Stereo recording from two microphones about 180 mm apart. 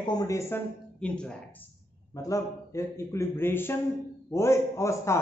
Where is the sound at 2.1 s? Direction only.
20° left (ahead or behind).